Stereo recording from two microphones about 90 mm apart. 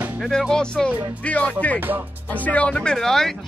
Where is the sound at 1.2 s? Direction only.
15° left (ahead or behind).